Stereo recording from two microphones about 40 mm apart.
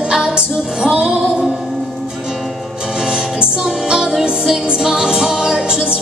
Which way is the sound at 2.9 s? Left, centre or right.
Centre.